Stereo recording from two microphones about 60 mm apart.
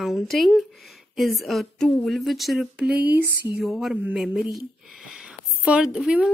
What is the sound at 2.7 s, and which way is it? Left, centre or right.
Speech, right.